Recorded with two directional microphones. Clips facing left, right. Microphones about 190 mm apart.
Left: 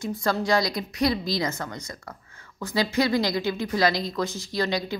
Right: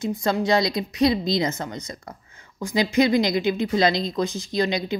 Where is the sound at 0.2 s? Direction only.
20° right (ahead or behind).